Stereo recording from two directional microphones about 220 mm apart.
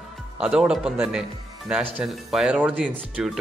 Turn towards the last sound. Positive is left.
turn(degrees=0)  # may be behind; listen again after turning